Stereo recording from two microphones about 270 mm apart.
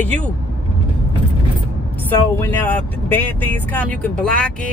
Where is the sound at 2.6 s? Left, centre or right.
Centre.